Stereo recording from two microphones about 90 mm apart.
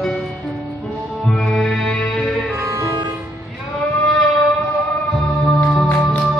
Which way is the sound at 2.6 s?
35° right (ahead or behind).